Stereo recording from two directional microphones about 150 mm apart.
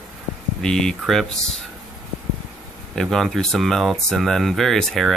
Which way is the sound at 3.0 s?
Centre (ahead or behind).